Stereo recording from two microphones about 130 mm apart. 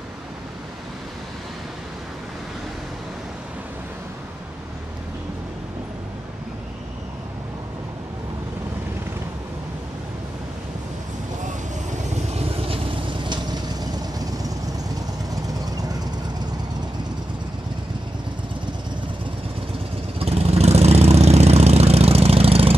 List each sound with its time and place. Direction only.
11.9 s vehicle: 65° right (ahead or behind)
12.6 s vehicle: 45° right (ahead or behind)
20.2 s vehicle: 50° right (ahead or behind)